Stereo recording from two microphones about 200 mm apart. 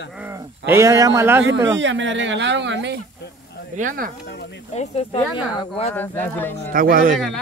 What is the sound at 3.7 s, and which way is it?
Speech, 40° right (ahead or behind).